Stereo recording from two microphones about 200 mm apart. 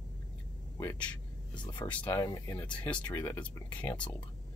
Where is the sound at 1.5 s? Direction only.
20° left (ahead or behind).